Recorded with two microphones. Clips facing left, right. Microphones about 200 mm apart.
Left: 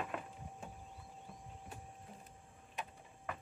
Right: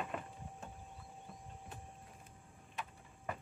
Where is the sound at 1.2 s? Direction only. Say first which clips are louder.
Even; 5° left (ahead or behind).